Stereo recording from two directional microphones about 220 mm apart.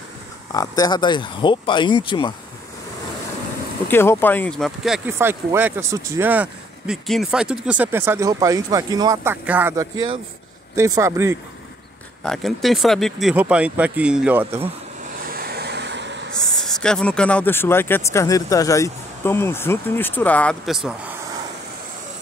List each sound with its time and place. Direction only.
0.5 s speech: 15° left (ahead or behind)
3.9 s speech: 10° left (ahead or behind); by 11.3 s 15° right (ahead or behind)
12.3 s speech: centre (ahead or behind)
15.2 s vehicle: 45° right (ahead or behind)
16.3 s speech: centre (ahead or behind)